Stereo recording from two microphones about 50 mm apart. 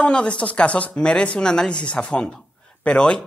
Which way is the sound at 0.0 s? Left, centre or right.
Left.